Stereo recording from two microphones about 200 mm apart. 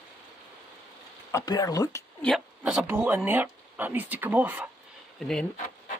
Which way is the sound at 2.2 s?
Centre (ahead or behind).